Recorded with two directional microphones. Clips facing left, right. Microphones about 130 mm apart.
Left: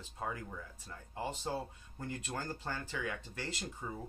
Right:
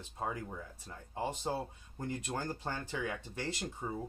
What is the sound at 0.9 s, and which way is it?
Speech, 15° right (ahead or behind).